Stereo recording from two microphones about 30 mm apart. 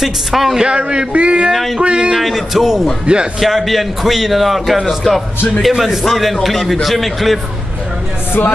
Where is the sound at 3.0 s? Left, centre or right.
Right.